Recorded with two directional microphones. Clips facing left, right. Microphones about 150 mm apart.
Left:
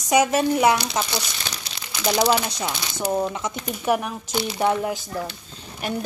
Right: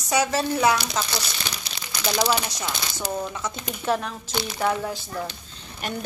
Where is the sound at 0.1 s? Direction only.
20° left (ahead or behind).